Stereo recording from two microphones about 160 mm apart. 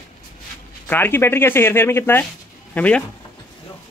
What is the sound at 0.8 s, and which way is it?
Speech, 10° left (ahead or behind).